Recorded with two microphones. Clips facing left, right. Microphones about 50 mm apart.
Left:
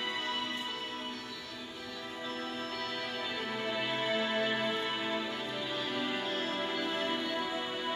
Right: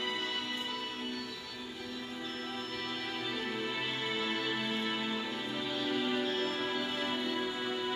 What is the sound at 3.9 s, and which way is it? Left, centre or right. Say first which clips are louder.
Music: left 3 dB; left.